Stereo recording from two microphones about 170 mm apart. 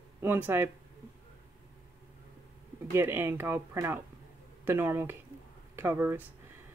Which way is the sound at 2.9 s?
15° right (ahead or behind).